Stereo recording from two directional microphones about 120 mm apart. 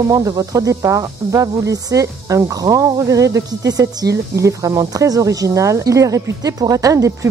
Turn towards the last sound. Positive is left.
turn(degrees=-25)  # may be behind; listen again after turning